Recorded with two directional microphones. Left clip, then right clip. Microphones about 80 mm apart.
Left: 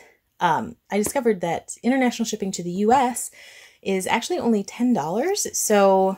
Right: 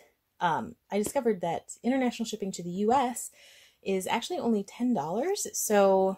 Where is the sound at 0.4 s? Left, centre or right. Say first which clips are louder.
Left 7 dB; centre.